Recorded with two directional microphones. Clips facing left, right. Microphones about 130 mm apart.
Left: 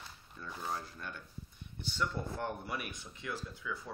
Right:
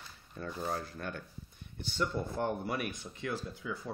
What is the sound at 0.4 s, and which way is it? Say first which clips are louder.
Speech: right 4 dB; 55° right (ahead or behind).